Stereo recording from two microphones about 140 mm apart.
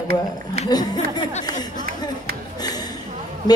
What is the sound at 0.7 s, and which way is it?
Speech, 30° left (ahead or behind).